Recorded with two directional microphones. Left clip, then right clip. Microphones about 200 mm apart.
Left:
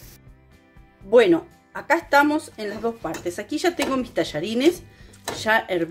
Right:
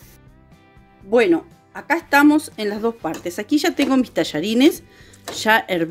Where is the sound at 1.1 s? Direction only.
25° right (ahead or behind).